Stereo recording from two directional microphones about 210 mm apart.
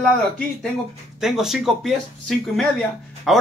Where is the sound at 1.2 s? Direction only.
Centre (ahead or behind).